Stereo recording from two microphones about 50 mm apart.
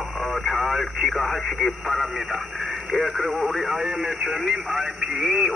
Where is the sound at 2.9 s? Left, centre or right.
Centre.